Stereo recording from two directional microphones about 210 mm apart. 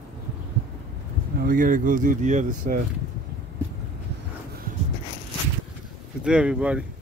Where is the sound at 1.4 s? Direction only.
40° right (ahead or behind).